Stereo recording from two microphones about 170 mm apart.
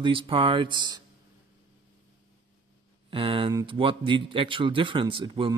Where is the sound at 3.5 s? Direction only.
30° right (ahead or behind).